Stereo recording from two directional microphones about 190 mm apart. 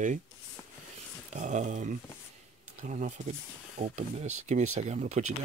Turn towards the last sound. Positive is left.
turn(degrees=-40)  # may be behind; listen again after turning